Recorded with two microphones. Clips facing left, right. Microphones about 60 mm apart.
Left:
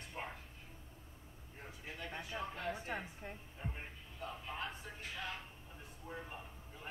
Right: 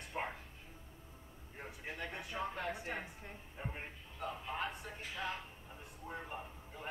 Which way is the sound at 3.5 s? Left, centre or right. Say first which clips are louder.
Right 5 dB; right.